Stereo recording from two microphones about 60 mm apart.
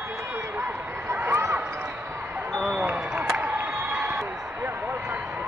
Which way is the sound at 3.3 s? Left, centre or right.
Right.